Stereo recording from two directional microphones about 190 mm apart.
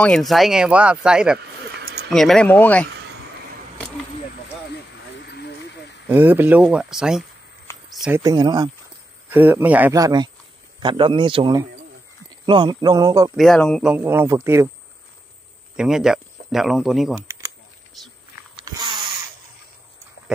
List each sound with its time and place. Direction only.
0.0 s speech: centre (ahead or behind)
5.2 s a sound: 60° left (ahead or behind)
6.0 s speech: 10° right (ahead or behind)
7.9 s a sound: 5° right (ahead or behind)
8.2 s a man's voice: 20° right (ahead or behind)
9.3 s a man's voice: 10° right (ahead or behind)
13.4 s speech: 5° left (ahead or behind)
13.9 s speech: 10° right (ahead or behind)
15.7 s speech: 5° right (ahead or behind)
18.6 s a sound: 25° right (ahead or behind)